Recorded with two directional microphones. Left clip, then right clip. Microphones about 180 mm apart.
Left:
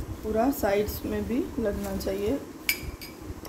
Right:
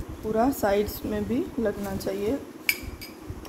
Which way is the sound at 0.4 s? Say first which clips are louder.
Right 1 dB; 30° right (ahead or behind).